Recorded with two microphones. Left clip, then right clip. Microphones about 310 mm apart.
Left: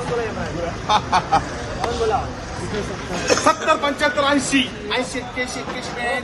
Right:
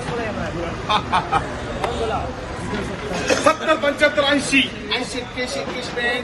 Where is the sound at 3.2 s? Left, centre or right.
Left.